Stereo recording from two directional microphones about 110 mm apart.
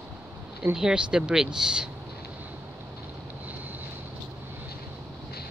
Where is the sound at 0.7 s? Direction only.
5° right (ahead or behind).